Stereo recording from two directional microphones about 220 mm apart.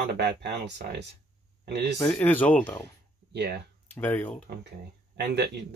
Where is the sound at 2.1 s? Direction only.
5° left (ahead or behind).